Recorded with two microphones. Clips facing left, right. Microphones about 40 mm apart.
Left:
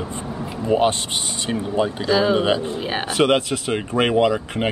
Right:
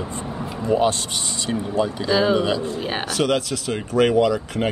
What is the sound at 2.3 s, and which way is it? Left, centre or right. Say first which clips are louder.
Speech: left 2 dB; left.